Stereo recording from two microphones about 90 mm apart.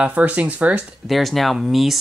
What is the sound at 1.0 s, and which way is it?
Speech, centre (ahead or behind).